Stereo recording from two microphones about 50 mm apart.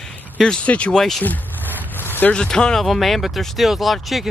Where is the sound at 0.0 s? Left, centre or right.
Centre.